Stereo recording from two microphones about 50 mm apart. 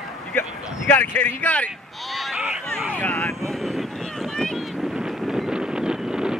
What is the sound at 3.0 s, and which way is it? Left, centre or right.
Speech, left.